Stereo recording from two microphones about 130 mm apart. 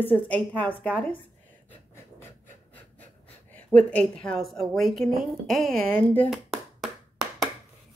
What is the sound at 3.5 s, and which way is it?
A woman's voice, 10° left (ahead or behind).